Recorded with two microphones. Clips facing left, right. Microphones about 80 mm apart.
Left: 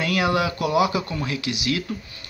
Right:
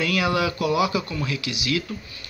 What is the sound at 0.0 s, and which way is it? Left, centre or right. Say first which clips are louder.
Speech: left 1 dB; left.